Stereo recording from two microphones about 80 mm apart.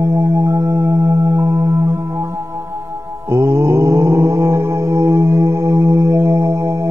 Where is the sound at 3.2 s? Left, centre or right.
Right.